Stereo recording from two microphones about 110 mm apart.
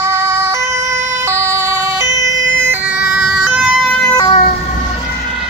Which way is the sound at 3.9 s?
5° left (ahead or behind).